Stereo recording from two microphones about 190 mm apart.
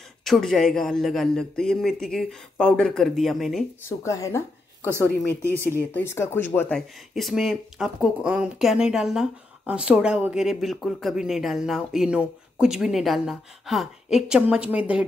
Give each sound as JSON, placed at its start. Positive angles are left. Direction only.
{"t": 0.2, "sound": "speech", "side_deg": 0}
{"t": 4.0, "sound": "speech", "side_deg": 15}